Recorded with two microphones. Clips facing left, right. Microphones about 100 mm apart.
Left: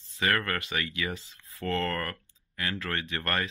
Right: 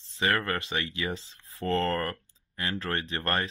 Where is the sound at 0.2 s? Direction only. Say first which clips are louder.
Right 1 dB; 25° right (ahead or behind).